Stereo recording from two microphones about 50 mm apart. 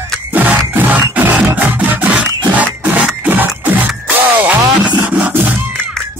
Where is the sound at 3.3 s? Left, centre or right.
Right.